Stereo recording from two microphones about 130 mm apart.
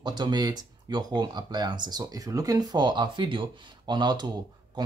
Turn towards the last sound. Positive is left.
turn(degrees=-35)  # may be behind; listen again after turning